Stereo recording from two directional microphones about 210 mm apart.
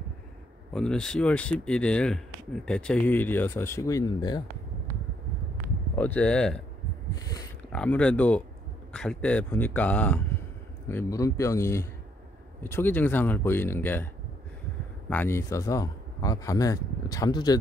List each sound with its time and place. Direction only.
0.7 s speech: 5° left (ahead or behind); by 4.4 s 20° left (ahead or behind)
5.9 s speech: 5° left (ahead or behind)
7.7 s speech: 5° left (ahead or behind)
15.0 s speech: 10° left (ahead or behind)